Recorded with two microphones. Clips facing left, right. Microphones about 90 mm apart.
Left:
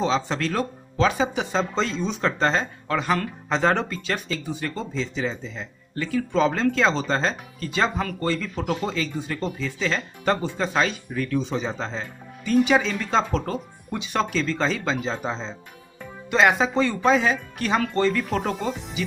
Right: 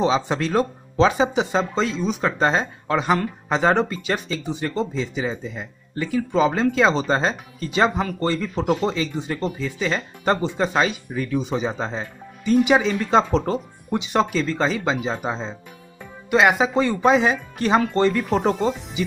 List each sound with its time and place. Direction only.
0.0 s speech: 15° right (ahead or behind)
9.4 s speech: 5° right (ahead or behind)
14.2 s speech: 5° right (ahead or behind)